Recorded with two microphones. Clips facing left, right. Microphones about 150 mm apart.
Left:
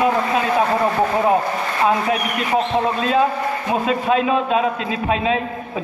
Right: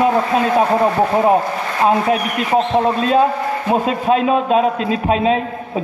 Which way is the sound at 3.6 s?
45° right (ahead or behind).